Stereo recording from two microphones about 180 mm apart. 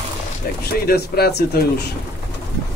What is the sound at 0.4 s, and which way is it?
Speech, 55° left (ahead or behind).